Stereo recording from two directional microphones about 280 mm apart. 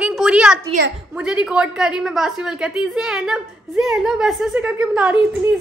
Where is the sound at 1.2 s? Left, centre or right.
Centre.